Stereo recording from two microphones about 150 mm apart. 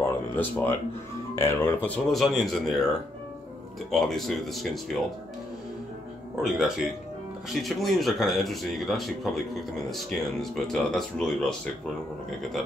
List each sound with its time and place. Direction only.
0.0 s a sound: 15° left (ahead or behind)
1.3 s speech: 15° left (ahead or behind)
3.9 s speech: centre (ahead or behind)
6.4 s speech: centre (ahead or behind)